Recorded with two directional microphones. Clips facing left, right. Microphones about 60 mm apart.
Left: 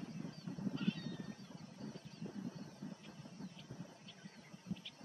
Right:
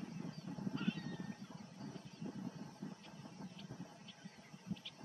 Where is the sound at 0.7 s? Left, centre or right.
Right.